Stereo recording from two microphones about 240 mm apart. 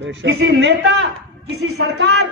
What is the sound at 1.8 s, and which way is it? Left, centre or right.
Speech, right.